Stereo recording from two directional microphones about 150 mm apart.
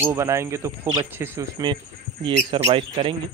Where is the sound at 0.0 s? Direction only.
15° right (ahead or behind).